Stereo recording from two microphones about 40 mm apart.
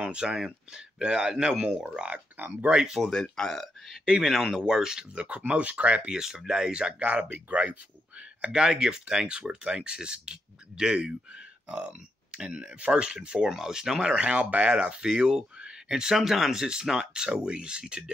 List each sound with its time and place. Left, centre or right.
0.0 s speech: right
2.3 s speech: right
2.7 s speech: centre
3.1 s speech: centre
4.0 s speech: centre
5.2 s speech: right
6.1 s speech: centre
7.0 s speech: right
8.5 s speech: centre; by 12.4 s right
12.4 s speech: right